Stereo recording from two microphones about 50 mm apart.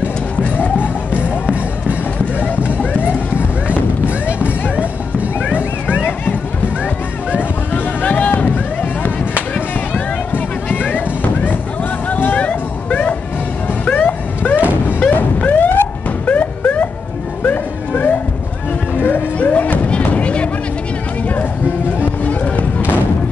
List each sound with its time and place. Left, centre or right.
0.0 s music: left
2.3 s a sound: left
5.9 s a sound: left
7.7 s boat: left
10.3 s boat: left
12.1 s music: left
13.9 s vehicle: left
14.9 s a sound: left
17.4 s music: left
22.2 s music: left